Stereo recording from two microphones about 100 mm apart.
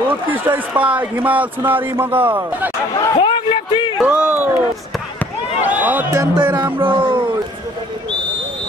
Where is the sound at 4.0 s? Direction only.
15° right (ahead or behind).